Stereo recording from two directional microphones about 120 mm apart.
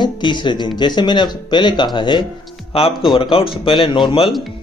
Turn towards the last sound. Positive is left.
turn(degrees=50)  # may be behind; listen again after turning